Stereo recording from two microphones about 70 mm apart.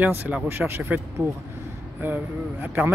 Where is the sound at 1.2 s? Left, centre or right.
Right.